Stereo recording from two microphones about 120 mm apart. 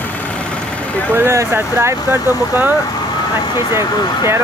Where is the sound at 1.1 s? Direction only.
20° right (ahead or behind).